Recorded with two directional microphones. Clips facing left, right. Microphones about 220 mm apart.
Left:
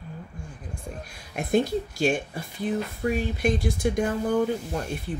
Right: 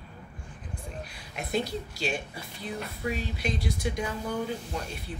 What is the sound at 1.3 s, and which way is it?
Speech, 50° left (ahead or behind).